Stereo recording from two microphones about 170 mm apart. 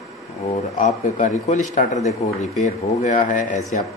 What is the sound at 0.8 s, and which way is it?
A man's voice, 50° left (ahead or behind).